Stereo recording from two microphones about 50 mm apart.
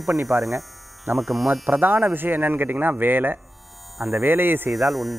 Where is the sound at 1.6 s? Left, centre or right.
Right.